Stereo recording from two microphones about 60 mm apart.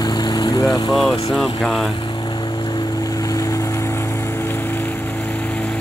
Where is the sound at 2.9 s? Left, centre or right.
Left.